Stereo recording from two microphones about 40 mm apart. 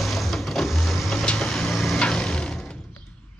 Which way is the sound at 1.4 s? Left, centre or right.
Centre.